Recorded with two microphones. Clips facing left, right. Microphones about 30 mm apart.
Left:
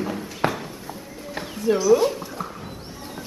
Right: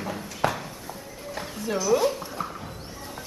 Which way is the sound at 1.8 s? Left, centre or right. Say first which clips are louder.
Left 3 dB; centre.